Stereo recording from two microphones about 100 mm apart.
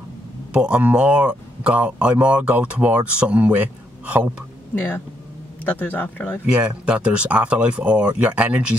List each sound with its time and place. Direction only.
0.5 s speech: 10° right (ahead or behind)
5.7 s speech: 15° left (ahead or behind)
6.4 s speech: 10° right (ahead or behind)